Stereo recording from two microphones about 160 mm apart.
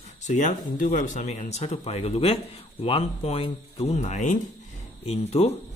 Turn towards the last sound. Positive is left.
turn(degrees=40)  # may be behind; listen again after turning